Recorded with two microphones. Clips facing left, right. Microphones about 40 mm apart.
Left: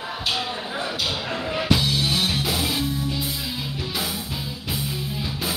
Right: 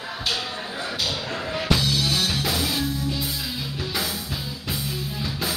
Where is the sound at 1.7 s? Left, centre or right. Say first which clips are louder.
Even; centre.